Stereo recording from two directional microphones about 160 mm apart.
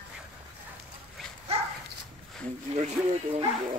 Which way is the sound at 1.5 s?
40° right (ahead or behind).